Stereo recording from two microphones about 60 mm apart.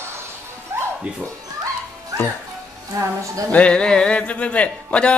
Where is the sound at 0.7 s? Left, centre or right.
Right.